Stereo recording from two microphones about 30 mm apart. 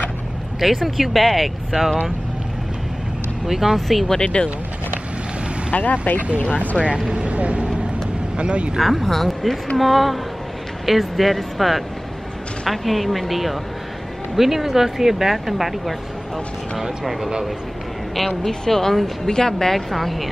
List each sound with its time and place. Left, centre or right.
0.6 s speech: centre
3.4 s speech: centre
4.2 s speech: left
5.7 s speech: left
6.8 s speech: right
7.2 s speech: right
8.7 s speech: centre
9.0 s speech: centre
17.0 s speech: centre
18.4 s speech: centre
19.7 s speech: centre